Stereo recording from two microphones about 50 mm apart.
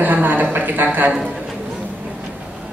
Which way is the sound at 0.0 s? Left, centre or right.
Right.